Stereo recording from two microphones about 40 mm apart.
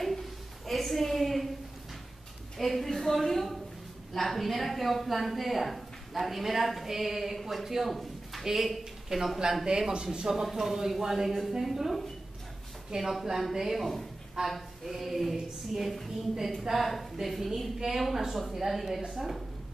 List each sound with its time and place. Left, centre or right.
0.0 s a sound: centre
2.5 s a woman's voice: centre
9.7 s speech: centre
10.3 s a woman's voice: centre